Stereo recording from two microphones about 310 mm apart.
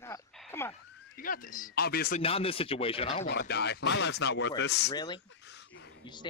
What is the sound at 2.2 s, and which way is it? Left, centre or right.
Speech, centre.